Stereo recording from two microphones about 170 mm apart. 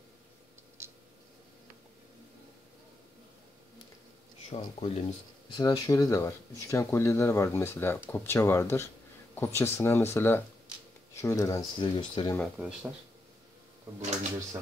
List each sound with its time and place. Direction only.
0.8 s a sound: 15° right (ahead or behind)
4.5 s speech: 35° left (ahead or behind)
5.6 s speech: 20° left (ahead or behind)
12.5 s speech: 5° right (ahead or behind)